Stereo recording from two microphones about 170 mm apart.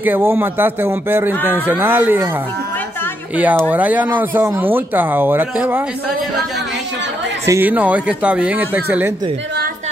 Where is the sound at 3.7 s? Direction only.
10° right (ahead or behind).